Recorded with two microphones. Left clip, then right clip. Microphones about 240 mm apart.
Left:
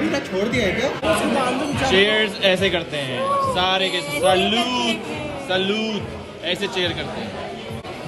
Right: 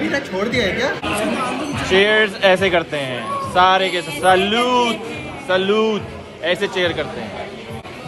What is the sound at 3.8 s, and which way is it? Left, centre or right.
Speech, centre.